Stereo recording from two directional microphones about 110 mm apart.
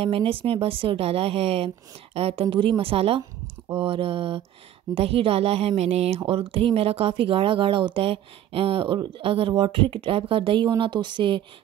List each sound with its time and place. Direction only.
0.0 s speech: 55° right (ahead or behind)